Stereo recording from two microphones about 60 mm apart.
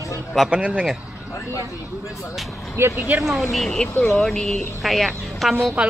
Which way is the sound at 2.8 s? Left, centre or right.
Right.